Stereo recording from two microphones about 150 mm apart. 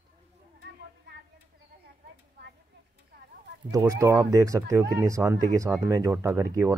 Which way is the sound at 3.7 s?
20° right (ahead or behind).